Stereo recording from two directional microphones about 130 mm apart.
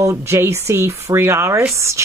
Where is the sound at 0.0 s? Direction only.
20° right (ahead or behind).